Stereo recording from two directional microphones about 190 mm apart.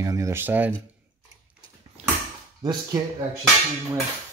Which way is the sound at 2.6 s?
20° right (ahead or behind).